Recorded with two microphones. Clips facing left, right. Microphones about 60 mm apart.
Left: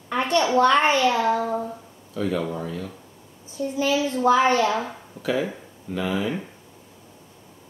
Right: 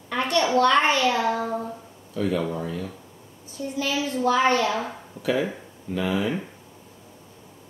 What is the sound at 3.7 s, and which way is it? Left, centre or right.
Speech, left.